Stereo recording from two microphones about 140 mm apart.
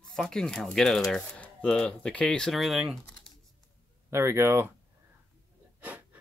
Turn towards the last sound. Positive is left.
turn(degrees=-10)  # may be behind; listen again after turning